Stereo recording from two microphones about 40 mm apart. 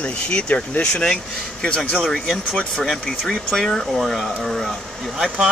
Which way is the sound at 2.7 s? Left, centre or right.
Centre.